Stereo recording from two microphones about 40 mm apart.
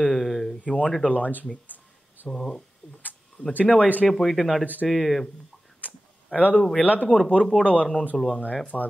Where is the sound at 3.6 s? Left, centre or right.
Left.